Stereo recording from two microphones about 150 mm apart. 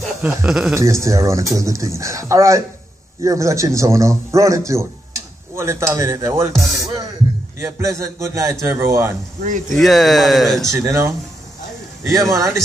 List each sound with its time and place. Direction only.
0.2 s speech: 15° right (ahead or behind)
0.5 s speech: 5° right (ahead or behind)
0.7 s speech: 20° right (ahead or behind)
6.5 s speech: centre (ahead or behind)
7.5 s speech: 20° right (ahead or behind)
9.8 s speech: centre (ahead or behind)
10.7 s a man's voice: 20° right (ahead or behind)